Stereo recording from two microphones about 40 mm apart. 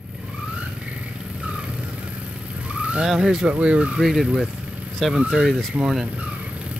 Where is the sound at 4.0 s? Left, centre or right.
Centre.